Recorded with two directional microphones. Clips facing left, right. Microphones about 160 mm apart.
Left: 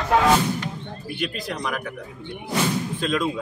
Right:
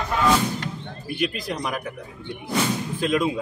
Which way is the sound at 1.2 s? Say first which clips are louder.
Right 2 dB; 10° right (ahead or behind).